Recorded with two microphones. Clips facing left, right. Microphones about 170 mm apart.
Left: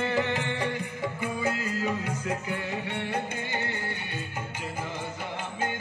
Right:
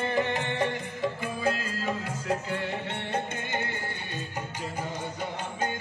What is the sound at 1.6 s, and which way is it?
Music, 15° left (ahead or behind).